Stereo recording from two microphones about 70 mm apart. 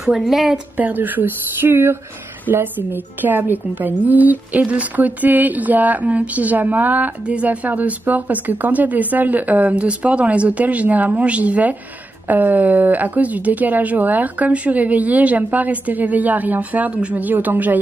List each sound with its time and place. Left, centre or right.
0.0 s a woman's voice: centre
0.7 s a woman's voice: right